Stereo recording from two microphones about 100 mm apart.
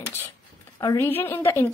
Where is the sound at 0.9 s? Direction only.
20° left (ahead or behind).